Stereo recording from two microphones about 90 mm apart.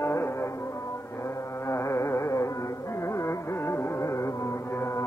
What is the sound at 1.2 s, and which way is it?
Carnatic music, 30° left (ahead or behind).